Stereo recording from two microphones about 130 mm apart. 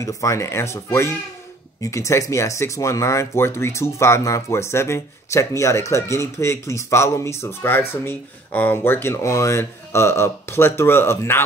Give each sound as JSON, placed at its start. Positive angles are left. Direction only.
{"t": 0.0, "sound": "speech", "side_deg": 25}